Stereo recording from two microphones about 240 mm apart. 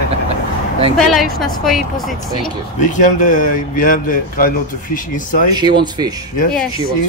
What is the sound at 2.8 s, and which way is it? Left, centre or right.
Speech, left.